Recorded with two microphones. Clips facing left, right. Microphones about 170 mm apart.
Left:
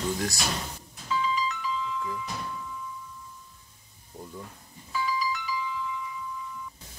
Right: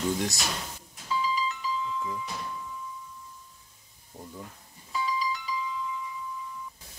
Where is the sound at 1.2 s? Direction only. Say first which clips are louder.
Left 1 dB; 30° right (ahead or behind).